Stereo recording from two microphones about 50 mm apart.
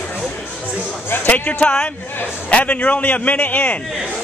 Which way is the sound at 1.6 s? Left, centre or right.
Centre.